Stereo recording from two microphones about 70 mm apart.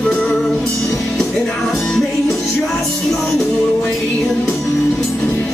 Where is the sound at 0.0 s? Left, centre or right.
Centre.